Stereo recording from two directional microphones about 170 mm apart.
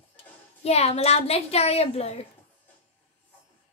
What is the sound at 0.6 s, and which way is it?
A woman's voice, 40° left (ahead or behind).